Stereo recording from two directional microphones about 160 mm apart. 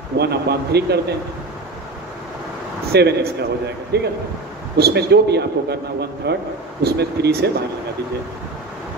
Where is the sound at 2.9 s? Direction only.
90° right.